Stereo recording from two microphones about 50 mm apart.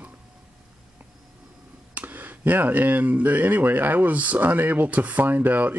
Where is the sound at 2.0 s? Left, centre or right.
Right.